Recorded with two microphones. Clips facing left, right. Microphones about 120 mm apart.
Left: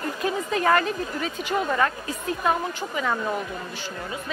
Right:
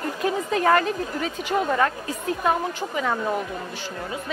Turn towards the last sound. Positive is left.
turn(degrees=-30)  # may be behind; listen again after turning